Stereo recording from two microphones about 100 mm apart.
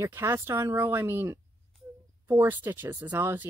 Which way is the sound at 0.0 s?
25° right (ahead or behind).